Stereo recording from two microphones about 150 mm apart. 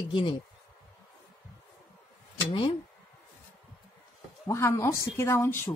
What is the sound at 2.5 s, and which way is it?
Speech, 40° left (ahead or behind).